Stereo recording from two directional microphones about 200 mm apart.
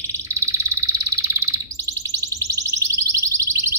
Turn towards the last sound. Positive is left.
turn(degrees=-15)  # may be behind; listen again after turning